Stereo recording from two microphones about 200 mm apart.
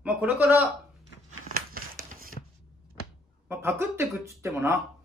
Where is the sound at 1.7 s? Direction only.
45° right (ahead or behind).